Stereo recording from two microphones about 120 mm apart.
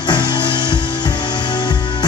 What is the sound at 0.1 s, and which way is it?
Music, 35° left (ahead or behind).